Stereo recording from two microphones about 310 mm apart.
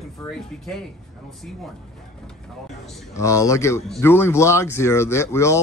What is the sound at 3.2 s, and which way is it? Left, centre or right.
Speech, centre.